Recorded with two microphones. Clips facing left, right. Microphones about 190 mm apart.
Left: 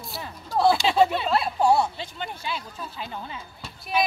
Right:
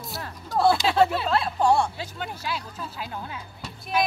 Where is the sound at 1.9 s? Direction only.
5° right (ahead or behind).